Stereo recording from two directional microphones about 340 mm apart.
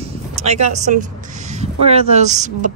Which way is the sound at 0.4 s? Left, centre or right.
Centre.